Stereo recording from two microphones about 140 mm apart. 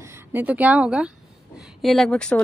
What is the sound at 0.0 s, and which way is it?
A woman's voice, 15° right (ahead or behind).